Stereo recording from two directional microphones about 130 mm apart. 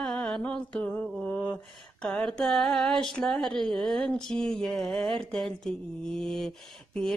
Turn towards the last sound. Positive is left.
turn(degrees=5)  # may be behind; listen again after turning